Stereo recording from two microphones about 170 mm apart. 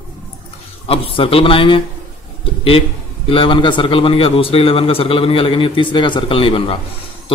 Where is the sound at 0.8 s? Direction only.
35° left (ahead or behind).